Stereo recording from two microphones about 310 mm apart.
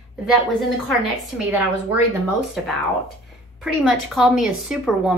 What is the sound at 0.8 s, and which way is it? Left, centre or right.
Speech, centre.